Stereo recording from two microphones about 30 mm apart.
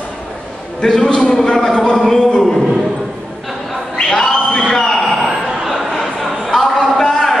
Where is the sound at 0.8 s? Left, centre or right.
Centre.